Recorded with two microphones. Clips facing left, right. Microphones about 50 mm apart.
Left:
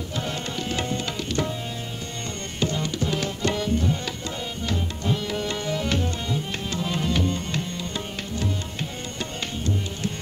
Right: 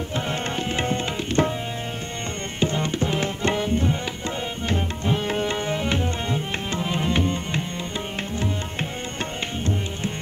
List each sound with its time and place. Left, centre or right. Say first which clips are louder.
0.1 s tabla: right 3 dB; right
2.6 s tabla: right 3 dB; right